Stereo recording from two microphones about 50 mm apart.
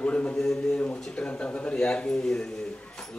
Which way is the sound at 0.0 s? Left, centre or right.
Left.